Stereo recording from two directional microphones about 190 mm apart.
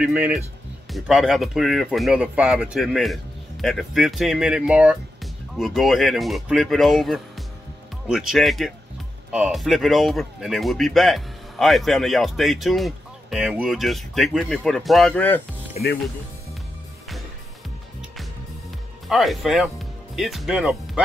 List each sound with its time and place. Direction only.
0.0 s speech: 5° right (ahead or behind); by 15.4 s 10° left (ahead or behind)
15.8 s speech: 35° left (ahead or behind)
19.0 s speech: centre (ahead or behind)